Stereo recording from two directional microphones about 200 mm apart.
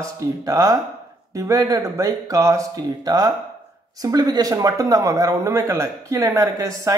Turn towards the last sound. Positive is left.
turn(degrees=-15)  # may be behind; listen again after turning